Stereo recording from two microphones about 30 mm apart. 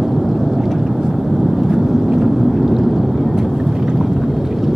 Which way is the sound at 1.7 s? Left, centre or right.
Centre.